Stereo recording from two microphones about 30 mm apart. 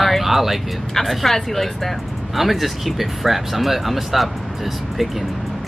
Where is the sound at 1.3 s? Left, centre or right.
Centre.